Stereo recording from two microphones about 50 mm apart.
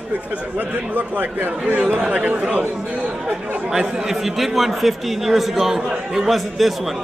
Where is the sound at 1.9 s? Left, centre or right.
Centre.